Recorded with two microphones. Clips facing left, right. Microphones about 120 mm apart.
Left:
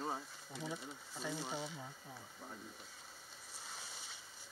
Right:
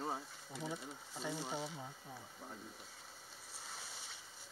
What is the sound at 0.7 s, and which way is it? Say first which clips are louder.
Speech: even; 20° right (ahead or behind).